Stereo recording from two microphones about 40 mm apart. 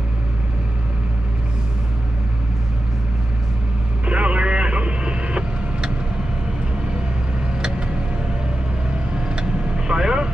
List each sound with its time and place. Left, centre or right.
4.0 s vehicle: right
9.1 s vehicle: right